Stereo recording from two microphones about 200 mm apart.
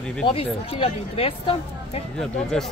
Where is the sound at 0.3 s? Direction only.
30° left (ahead or behind).